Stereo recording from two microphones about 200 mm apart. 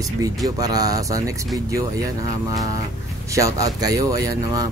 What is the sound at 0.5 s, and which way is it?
Speech, 20° right (ahead or behind).